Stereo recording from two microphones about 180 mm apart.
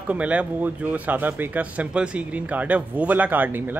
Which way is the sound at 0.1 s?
10° right (ahead or behind).